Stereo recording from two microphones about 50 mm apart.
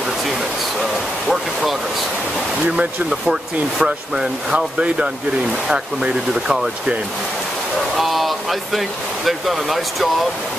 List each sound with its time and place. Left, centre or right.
1.2 s speech: centre
3.1 s speech: centre
8.0 s speech: centre